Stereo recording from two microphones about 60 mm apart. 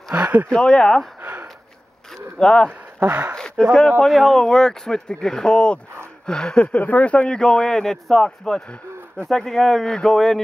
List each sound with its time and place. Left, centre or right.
0.1 s a sound: right
0.5 s speech: centre
2.3 s speech: centre